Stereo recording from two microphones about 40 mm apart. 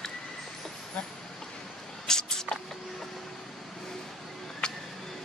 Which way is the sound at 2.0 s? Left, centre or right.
Centre.